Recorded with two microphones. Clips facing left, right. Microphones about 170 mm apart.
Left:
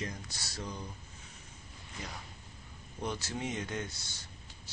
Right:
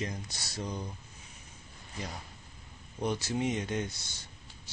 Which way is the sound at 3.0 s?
20° right (ahead or behind).